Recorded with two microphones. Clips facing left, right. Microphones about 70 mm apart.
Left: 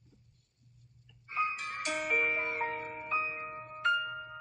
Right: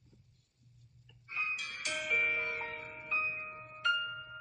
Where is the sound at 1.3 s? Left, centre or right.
Left.